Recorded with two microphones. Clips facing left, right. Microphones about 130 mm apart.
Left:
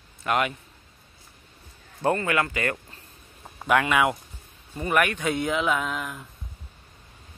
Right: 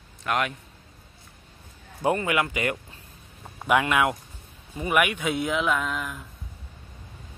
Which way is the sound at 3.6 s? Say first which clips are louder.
Even; 5° right (ahead or behind).